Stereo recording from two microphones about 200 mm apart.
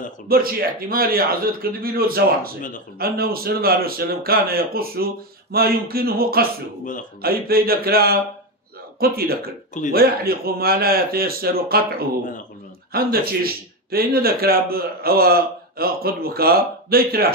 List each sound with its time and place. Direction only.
0.3 s a man's voice: 50° right (ahead or behind)